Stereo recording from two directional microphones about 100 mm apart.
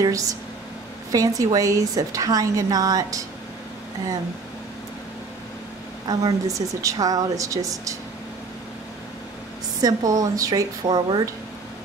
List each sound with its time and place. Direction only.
0.0 s a woman's voice: 35° right (ahead or behind)
6.0 s a woman's voice: 40° right (ahead or behind)
9.8 s a woman's voice: 35° right (ahead or behind)